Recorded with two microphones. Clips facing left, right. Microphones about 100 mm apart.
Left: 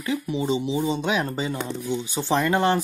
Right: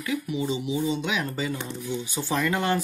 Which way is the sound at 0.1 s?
30° left (ahead or behind).